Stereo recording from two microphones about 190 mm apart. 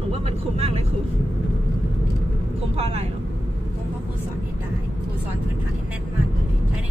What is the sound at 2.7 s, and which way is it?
Speech, 30° right (ahead or behind).